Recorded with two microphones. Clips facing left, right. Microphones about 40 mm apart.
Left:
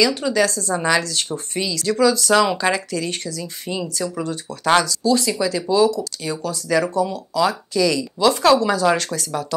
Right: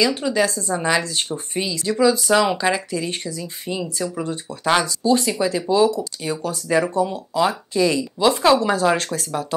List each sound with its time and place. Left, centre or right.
0.2 s speech: right
3.6 s speech: centre
4.2 s speech: right
8.9 s speech: right